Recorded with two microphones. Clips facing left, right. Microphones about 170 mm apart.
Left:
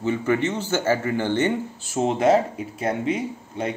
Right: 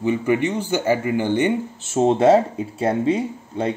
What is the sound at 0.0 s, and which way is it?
Speech, 15° right (ahead or behind).